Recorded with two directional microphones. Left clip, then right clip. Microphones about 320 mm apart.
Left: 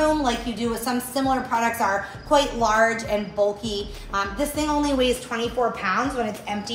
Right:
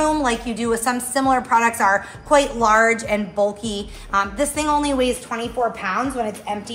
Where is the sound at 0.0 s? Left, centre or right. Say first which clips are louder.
Right 2 dB; right.